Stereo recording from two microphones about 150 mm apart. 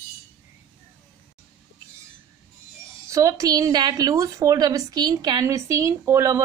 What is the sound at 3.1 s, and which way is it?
A woman's voice, 20° right (ahead or behind).